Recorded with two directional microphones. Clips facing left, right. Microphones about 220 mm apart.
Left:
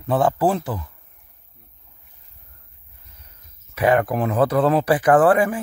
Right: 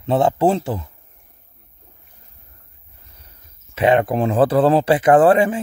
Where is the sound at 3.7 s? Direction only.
25° right (ahead or behind).